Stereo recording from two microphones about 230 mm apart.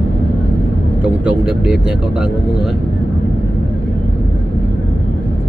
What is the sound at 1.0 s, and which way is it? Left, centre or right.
Speech, centre.